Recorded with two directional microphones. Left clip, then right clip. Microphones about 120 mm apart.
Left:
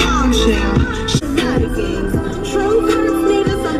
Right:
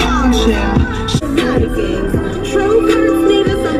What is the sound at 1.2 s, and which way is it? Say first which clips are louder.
Music: right 5 dB; 40° left (ahead or behind).